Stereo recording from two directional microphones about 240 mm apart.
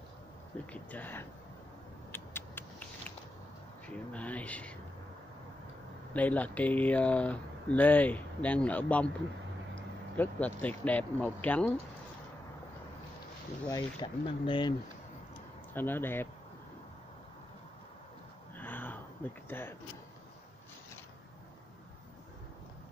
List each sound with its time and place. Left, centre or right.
0.7 s speech: centre
2.1 s a sound: centre
3.8 s speech: centre
6.1 s speech: centre
10.1 s speech: centre
13.7 s speech: centre
15.7 s speech: centre
18.6 s a sound: centre